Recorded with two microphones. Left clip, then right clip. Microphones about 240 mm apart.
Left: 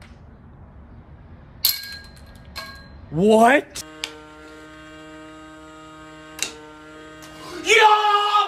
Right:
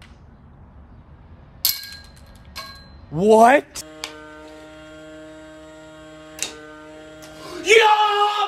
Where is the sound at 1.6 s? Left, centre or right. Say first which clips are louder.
Left 1 dB; centre.